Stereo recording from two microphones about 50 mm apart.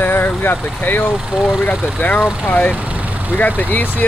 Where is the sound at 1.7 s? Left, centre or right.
Left.